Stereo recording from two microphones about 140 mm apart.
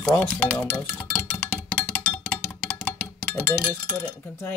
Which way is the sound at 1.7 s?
10° left (ahead or behind).